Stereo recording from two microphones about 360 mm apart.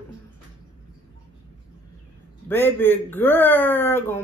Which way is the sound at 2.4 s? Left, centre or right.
Centre.